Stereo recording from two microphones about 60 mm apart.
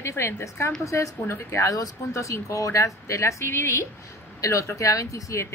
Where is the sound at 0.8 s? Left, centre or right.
Left.